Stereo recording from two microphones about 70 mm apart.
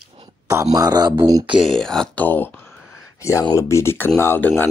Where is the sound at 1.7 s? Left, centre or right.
Centre.